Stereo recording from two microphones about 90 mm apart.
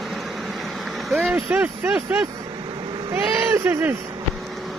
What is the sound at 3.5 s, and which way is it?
Speech, 25° right (ahead or behind).